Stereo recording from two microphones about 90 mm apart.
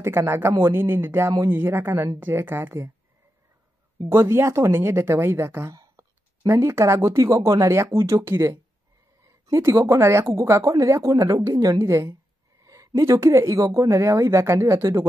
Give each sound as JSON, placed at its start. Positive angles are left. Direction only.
{"t": 0.0, "sound": "speech", "side_deg": -25}
{"t": 4.1, "sound": "speech", "side_deg": -30}